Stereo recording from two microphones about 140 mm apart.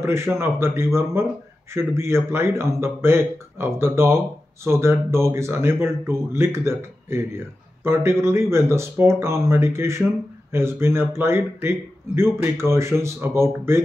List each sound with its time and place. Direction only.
0.0 s speech: 20° right (ahead or behind)